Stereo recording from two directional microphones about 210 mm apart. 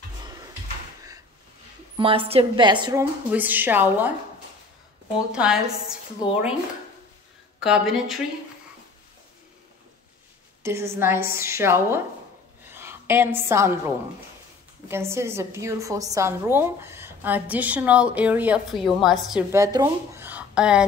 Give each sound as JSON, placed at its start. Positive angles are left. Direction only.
{"t": 2.0, "sound": "a woman's voice", "side_deg": -25}
{"t": 5.3, "sound": "a woman's voice", "side_deg": -5}
{"t": 7.6, "sound": "a woman's voice", "side_deg": 0}
{"t": 10.6, "sound": "a woman's voice", "side_deg": -15}
{"t": 19.5, "sound": "speech", "side_deg": -15}